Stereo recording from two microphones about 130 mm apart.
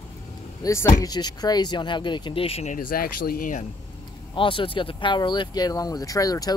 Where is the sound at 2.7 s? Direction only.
90° left.